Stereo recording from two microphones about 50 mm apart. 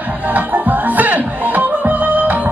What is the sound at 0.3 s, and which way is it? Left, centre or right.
Music, right.